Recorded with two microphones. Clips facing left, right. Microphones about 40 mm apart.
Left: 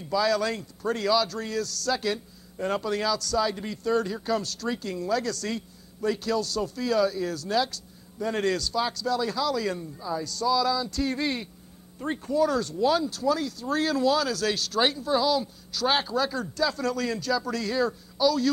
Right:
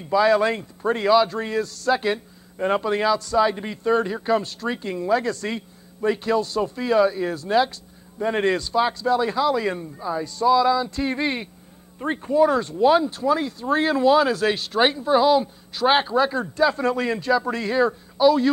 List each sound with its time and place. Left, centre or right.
0.0 s a man's voice: right